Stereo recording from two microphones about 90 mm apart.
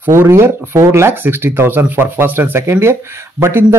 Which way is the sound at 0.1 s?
30° right (ahead or behind).